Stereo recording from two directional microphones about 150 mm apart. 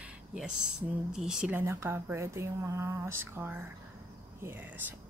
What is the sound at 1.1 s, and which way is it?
Speech, 5° right (ahead or behind).